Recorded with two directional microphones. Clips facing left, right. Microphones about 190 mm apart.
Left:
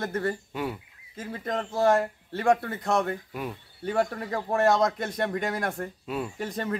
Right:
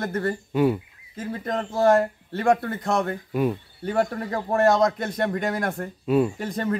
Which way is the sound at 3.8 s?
Centre (ahead or behind).